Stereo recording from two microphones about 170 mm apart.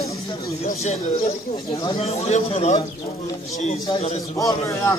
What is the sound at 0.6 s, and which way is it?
Speech, 40° left (ahead or behind).